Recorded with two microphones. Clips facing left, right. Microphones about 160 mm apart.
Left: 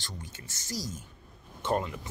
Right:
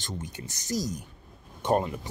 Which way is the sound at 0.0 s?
20° right (ahead or behind).